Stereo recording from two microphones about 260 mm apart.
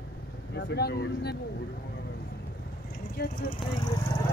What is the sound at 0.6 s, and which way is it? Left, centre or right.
Speech, left.